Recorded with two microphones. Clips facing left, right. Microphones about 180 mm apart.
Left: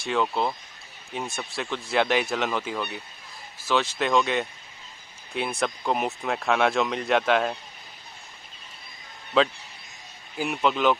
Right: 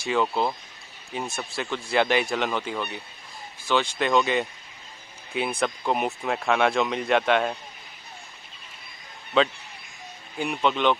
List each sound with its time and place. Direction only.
0.0 s speech: centre (ahead or behind)
9.4 s speech: centre (ahead or behind)